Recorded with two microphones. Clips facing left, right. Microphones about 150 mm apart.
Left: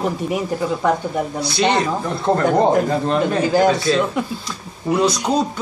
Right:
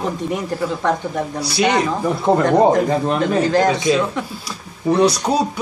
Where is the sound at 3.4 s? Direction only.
5° left (ahead or behind).